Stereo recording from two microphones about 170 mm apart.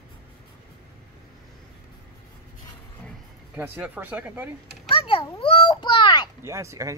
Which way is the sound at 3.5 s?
10° right (ahead or behind).